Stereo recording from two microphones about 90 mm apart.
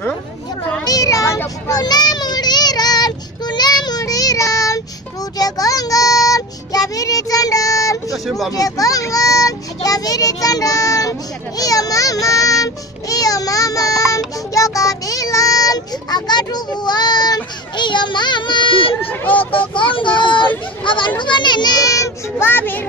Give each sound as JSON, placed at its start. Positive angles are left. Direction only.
{"t": 0.8, "sound": "a sound", "side_deg": 40}
{"t": 1.7, "sound": "child singing", "side_deg": 50}
{"t": 8.5, "sound": "speech", "side_deg": 40}
{"t": 18.9, "sound": "speech", "side_deg": 20}
{"t": 19.5, "sound": "a child's voice", "side_deg": 70}
{"t": 22.5, "sound": "speech", "side_deg": 20}